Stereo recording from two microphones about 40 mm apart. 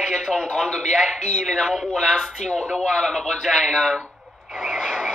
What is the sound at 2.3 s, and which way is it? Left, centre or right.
A man's voice, centre.